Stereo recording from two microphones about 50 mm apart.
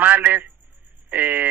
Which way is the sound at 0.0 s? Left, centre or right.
Right.